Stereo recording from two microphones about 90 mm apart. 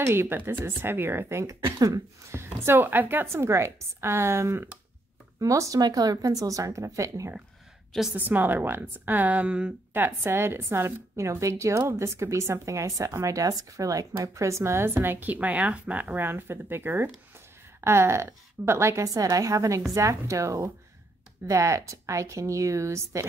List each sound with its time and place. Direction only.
0.0 s a woman's voice: 25° right (ahead or behind)
1.4 s a woman's voice: 35° right (ahead or behind)
8.1 s a woman's voice: 20° right (ahead or behind)
9.9 s a woman's voice: 25° right (ahead or behind)